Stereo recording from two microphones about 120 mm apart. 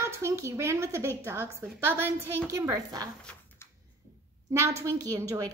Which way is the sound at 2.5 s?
30° right (ahead or behind).